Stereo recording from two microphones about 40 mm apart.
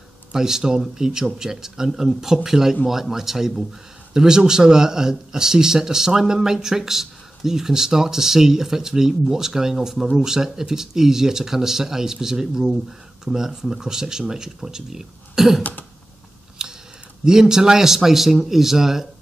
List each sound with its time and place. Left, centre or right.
0.3 s speech: centre
16.6 s typing: centre
17.2 s speech: centre